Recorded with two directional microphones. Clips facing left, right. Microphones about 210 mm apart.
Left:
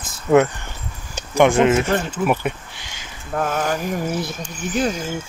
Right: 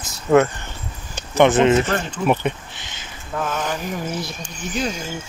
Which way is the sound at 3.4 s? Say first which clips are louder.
Left 3 dB; 45° left (ahead or behind).